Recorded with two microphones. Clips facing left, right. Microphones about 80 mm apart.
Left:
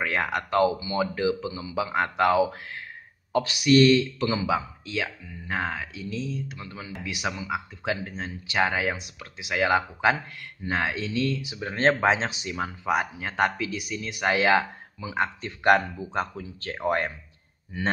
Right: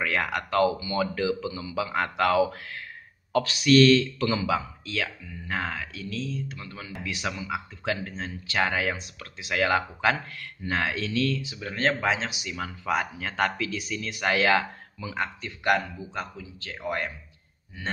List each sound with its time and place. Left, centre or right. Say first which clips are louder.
0.0 s speech: left 1 dB; left
11.5 s speech: left 4 dB; left
12.8 s speech: left 1 dB; centre
15.2 s speech: left 5 dB; left